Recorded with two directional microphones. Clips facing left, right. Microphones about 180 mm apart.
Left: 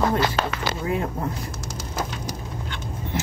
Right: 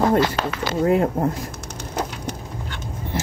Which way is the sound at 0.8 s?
50° right (ahead or behind).